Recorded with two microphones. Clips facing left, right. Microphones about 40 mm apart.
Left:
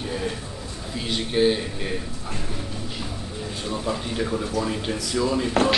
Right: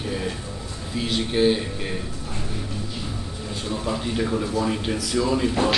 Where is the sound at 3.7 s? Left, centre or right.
Centre.